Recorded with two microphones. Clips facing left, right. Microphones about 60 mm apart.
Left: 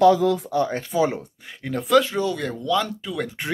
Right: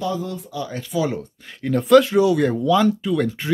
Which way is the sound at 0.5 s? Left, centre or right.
Left.